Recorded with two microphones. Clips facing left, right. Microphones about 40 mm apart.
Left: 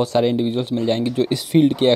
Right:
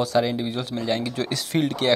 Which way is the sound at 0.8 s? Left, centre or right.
Left.